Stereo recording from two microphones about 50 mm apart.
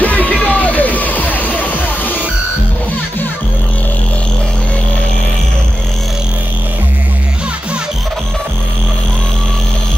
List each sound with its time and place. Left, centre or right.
0.0 s music: left